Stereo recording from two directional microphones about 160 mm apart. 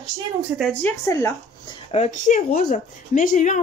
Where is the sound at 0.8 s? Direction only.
15° left (ahead or behind).